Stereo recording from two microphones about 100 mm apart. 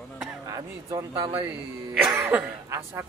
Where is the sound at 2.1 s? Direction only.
20° right (ahead or behind).